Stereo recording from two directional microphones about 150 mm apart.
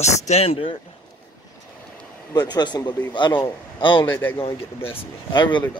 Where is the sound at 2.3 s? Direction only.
25° left (ahead or behind).